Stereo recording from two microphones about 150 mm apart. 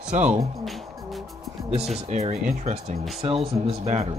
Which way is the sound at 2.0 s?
50° right (ahead or behind).